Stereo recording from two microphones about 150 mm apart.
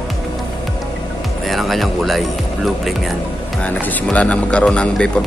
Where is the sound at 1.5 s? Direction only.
Centre (ahead or behind).